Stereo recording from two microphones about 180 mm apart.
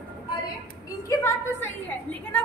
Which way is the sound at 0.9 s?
15° left (ahead or behind).